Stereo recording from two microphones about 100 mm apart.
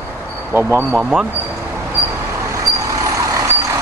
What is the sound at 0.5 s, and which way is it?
Speech, 25° right (ahead or behind).